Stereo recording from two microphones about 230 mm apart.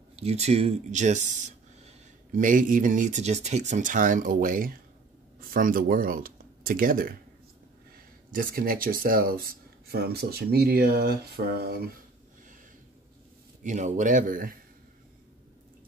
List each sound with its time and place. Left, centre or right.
0.1 s speech: right
8.4 s speech: right
13.6 s speech: right